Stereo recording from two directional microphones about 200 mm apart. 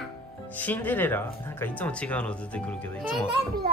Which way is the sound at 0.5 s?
10° left (ahead or behind).